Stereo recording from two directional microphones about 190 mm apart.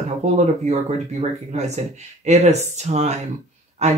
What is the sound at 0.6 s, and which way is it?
Speech, 35° right (ahead or behind).